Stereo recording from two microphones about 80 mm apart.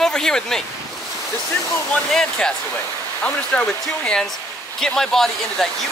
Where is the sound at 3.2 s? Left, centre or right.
Centre.